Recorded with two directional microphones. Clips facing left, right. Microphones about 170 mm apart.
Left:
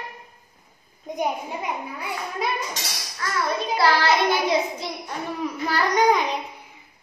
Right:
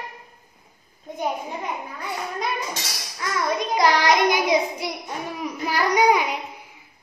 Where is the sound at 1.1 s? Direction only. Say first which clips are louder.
Left 4 dB; 15° left (ahead or behind).